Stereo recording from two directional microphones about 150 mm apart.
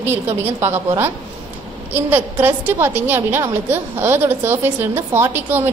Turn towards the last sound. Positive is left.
turn(degrees=-15)  # may be behind; listen again after turning